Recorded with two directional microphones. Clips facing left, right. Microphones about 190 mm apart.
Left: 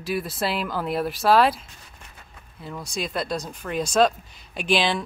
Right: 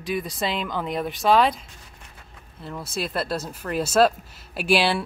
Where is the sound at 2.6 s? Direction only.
5° right (ahead or behind).